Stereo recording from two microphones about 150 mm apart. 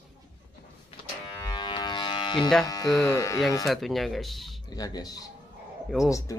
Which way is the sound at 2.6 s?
25° left (ahead or behind).